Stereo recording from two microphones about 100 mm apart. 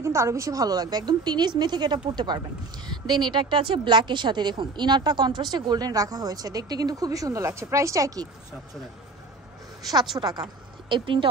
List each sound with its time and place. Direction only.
0.0 s a woman's voice: 30° right (ahead or behind)
10.1 s a woman's voice: 40° right (ahead or behind)